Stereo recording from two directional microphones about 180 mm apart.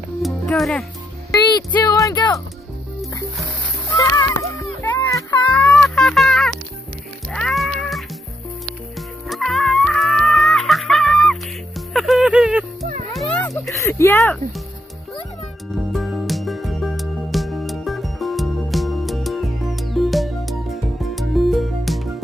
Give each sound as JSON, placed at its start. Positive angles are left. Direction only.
{"t": 0.2, "sound": "music", "side_deg": 0}
{"t": 1.3, "sound": "speech", "side_deg": 25}
{"t": 3.9, "sound": "music", "side_deg": 15}
{"t": 4.8, "sound": "a sound", "side_deg": 10}
{"t": 5.5, "sound": "music", "side_deg": 5}
{"t": 9.3, "sound": "music", "side_deg": 0}
{"t": 13.6, "sound": "speech", "side_deg": 15}
{"t": 15.9, "sound": "music", "side_deg": 0}